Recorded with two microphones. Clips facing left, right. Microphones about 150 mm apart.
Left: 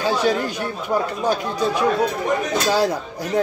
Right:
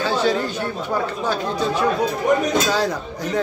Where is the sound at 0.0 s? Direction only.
10° left (ahead or behind).